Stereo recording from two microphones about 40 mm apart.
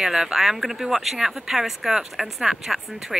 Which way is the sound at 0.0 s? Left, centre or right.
Centre.